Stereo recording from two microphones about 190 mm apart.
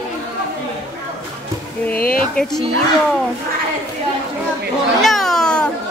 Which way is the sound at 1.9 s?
50° left (ahead or behind).